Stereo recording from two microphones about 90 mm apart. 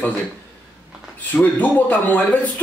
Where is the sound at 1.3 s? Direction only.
20° left (ahead or behind).